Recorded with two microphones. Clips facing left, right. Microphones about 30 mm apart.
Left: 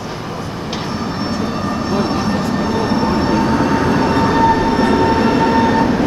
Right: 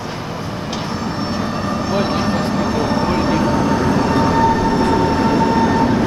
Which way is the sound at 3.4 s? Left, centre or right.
Centre.